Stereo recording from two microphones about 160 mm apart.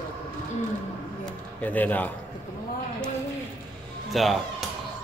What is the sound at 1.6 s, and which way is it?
Speech, 10° left (ahead or behind).